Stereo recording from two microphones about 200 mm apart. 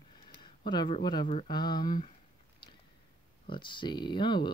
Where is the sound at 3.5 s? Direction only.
25° left (ahead or behind).